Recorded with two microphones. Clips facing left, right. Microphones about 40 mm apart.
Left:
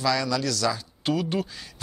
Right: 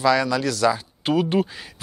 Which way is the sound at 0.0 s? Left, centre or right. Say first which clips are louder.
Right 5 dB; right.